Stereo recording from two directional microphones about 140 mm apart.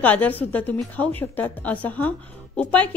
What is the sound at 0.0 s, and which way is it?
A woman's voice, 10° left (ahead or behind).